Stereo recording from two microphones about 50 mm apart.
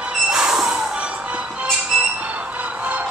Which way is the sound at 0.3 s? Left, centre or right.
Centre.